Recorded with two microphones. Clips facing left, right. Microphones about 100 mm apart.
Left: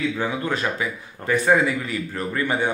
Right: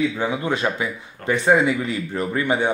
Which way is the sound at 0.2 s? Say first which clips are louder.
Right 2 dB; 20° right (ahead or behind).